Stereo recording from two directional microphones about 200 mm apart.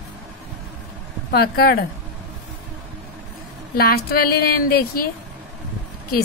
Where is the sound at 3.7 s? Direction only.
50° left (ahead or behind).